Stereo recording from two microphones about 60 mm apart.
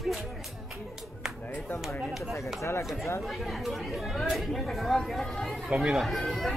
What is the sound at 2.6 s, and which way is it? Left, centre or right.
Speech, left.